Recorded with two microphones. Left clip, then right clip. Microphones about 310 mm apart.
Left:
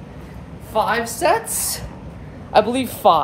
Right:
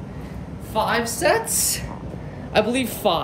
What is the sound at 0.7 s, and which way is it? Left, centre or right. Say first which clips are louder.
Speech: left 2 dB; centre.